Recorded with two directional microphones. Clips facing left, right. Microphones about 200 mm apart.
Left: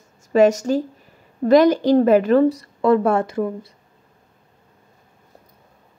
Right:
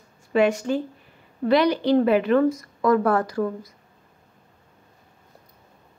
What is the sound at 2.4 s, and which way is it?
Speech, 30° left (ahead or behind).